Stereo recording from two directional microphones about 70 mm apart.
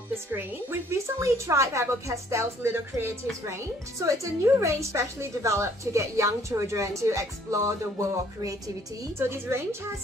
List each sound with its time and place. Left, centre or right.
0.3 s a woman's voice: right
1.2 s a woman's voice: right
9.2 s a woman's voice: right